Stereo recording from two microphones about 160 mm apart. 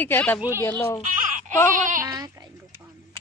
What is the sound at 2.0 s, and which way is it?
Speech, 25° right (ahead or behind).